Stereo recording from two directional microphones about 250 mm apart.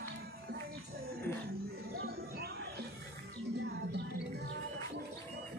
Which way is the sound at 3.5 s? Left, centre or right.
Right.